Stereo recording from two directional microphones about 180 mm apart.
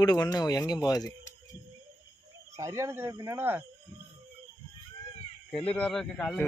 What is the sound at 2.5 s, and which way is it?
Speech, 15° right (ahead or behind).